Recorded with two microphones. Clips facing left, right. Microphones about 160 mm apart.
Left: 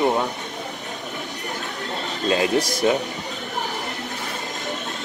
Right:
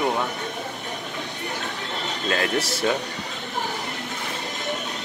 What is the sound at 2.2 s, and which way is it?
Speech, 20° left (ahead or behind).